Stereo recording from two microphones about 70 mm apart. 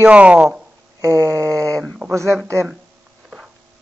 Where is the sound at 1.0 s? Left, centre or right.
Right.